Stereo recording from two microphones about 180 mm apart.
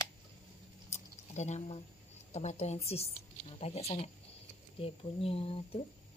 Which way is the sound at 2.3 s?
35° left (ahead or behind).